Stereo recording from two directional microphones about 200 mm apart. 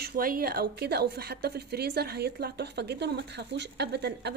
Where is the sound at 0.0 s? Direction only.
45° right (ahead or behind).